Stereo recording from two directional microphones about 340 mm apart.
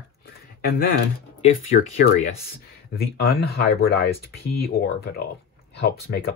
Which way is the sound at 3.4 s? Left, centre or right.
Left.